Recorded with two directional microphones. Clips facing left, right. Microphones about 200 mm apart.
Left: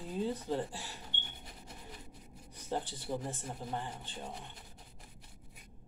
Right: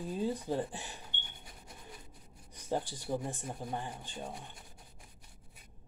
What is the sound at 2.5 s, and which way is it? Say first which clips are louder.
Speech: right 2 dB; 15° right (ahead or behind).